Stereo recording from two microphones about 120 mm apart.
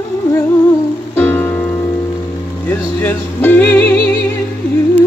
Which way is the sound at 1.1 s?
15° left (ahead or behind).